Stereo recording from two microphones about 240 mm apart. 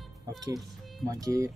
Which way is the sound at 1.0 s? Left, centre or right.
Centre.